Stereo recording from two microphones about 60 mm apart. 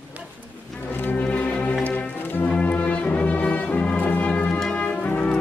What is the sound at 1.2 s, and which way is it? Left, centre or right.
Music, left.